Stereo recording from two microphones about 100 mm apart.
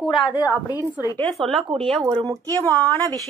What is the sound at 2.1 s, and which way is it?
Speech, 35° right (ahead or behind).